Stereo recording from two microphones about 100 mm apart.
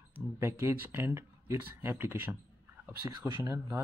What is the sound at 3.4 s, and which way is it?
Speech, 30° right (ahead or behind).